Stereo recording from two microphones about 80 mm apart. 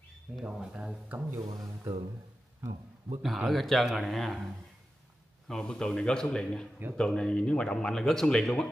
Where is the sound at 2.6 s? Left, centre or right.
Right.